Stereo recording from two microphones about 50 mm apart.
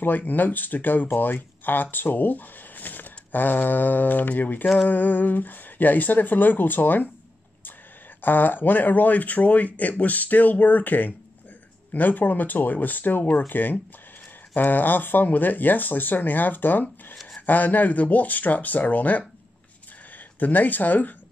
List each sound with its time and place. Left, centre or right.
0.0 s speech: left
8.2 s speech: left
13.2 s speech: left
13.5 s speech: left
20.3 s speech: left